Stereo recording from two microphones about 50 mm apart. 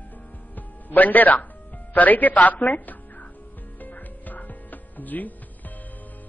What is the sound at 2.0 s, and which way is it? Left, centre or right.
Speech, left.